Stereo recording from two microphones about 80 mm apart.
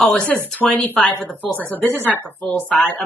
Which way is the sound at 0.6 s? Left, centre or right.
Left.